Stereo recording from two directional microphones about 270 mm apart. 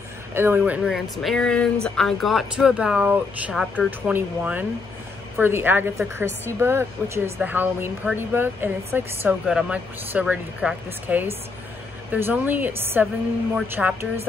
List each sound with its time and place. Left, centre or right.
0.3 s speech: centre